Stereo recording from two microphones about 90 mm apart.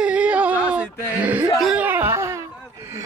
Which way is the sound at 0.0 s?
15° right (ahead or behind).